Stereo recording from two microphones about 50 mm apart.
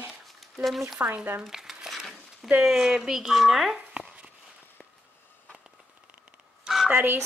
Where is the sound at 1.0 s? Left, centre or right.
Right.